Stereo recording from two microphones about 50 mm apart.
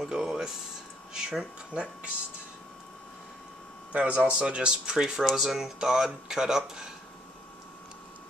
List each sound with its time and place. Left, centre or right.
0.0 s speech: centre
3.9 s speech: right